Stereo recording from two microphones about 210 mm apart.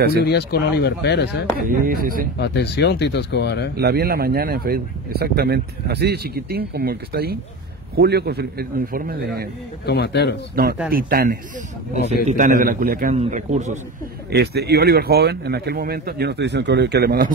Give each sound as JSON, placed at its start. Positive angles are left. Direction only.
{"t": 0.2, "sound": "speech", "side_deg": 50}
{"t": 1.6, "sound": "speech", "side_deg": -45}
{"t": 2.3, "sound": "speech", "side_deg": 55}
{"t": 3.7, "sound": "speech", "side_deg": -50}
{"t": 9.8, "sound": "speech", "side_deg": 50}
{"t": 10.5, "sound": "speech", "side_deg": -45}
{"t": 11.9, "sound": "a man's voice", "side_deg": 30}
{"t": 12.3, "sound": "a man's voice", "side_deg": -40}
{"t": 14.3, "sound": "speech", "side_deg": -50}